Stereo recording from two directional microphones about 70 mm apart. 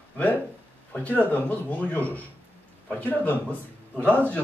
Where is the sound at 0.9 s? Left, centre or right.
Left.